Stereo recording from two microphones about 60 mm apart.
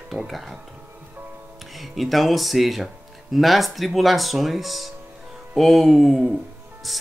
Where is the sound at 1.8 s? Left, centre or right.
Centre.